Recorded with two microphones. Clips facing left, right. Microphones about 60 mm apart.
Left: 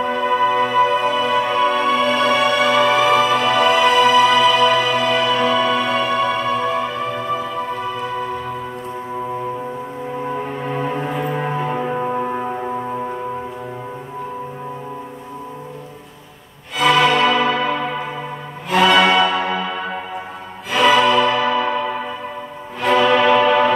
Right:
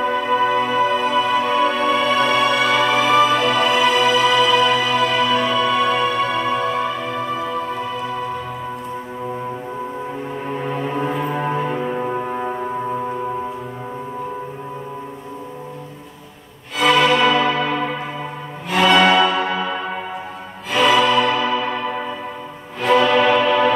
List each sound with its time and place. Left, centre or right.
0.0 s music: centre
4.9 s music: left
5.2 s music: centre
10.4 s music: centre
16.7 s music: centre
18.7 s music: centre
20.7 s music: centre
21.3 s music: centre
22.8 s music: centre